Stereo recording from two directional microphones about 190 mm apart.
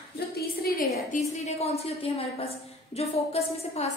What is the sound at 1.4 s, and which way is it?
A woman's voice, 35° left (ahead or behind).